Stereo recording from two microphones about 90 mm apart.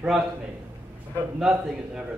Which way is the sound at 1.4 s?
5° right (ahead or behind).